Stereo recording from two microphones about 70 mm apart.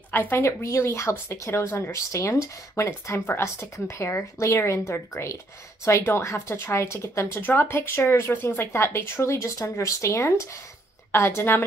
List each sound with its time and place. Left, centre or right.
0.1 s a woman's voice: left